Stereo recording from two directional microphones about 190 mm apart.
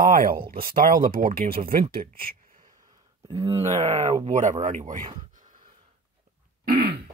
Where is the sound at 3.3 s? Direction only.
25° right (ahead or behind); by 5.6 s 45° right (ahead or behind).